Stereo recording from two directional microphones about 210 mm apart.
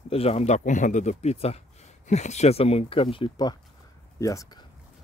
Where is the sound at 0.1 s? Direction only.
30° left (ahead or behind).